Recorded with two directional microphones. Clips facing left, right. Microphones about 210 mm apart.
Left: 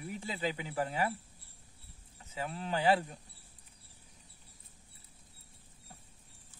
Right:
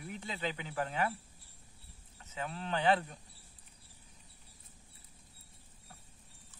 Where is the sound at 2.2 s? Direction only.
10° left (ahead or behind).